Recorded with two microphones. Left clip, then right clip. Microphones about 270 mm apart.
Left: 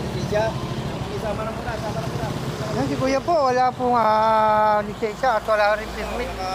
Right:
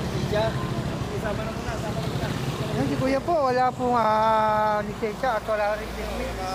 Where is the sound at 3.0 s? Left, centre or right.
Centre.